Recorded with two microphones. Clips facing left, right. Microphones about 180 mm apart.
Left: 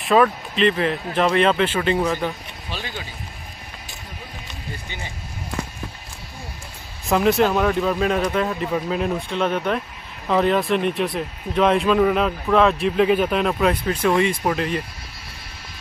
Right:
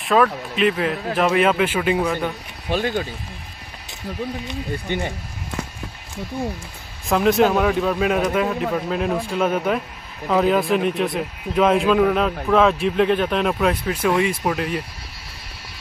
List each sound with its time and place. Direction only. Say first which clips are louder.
0.0 s speech: left 1 dB; centre (ahead or behind)
2.7 s speech: right 11 dB; 50° right (ahead or behind)
4.8 s speech: right 11 dB; 55° right (ahead or behind)
7.1 s speech: right 1 dB; centre (ahead or behind)